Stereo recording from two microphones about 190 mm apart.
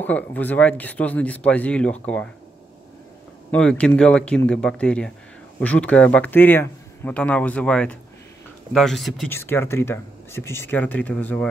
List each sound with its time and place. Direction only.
0.0 s speech: 10° left (ahead or behind)
3.5 s speech: 5° left (ahead or behind)
9.3 s speech: 10° left (ahead or behind)